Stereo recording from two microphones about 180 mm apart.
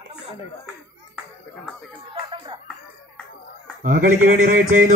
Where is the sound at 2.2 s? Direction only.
25° right (ahead or behind).